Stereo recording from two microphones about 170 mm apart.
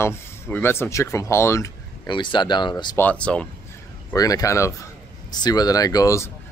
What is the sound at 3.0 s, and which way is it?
Speech, 10° left (ahead or behind).